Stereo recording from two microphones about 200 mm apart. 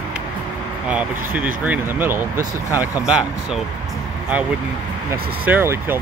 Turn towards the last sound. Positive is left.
turn(degrees=-10)  # may be behind; listen again after turning